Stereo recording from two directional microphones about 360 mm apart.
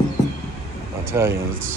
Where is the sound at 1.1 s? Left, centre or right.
Centre.